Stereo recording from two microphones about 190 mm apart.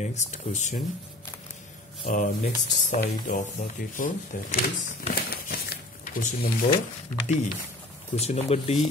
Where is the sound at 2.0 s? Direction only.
40° left (ahead or behind).